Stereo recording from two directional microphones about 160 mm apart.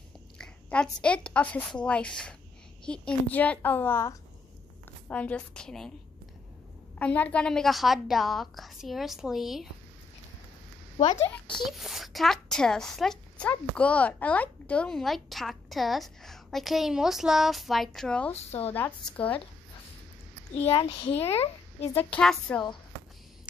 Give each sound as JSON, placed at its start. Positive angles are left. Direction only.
{"t": 0.4, "sound": "a woman's voice", "side_deg": 5}
{"t": 7.0, "sound": "speech", "side_deg": 10}
{"t": 11.6, "sound": "speech", "side_deg": 0}
{"t": 18.3, "sound": "a child's voice", "side_deg": 40}
{"t": 18.7, "sound": "a woman's voice", "side_deg": 10}
{"t": 20.5, "sound": "a child's voice", "side_deg": 40}
{"t": 21.9, "sound": "a woman's voice", "side_deg": 5}